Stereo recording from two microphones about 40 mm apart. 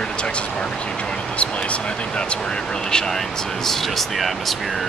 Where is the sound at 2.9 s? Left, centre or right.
Centre.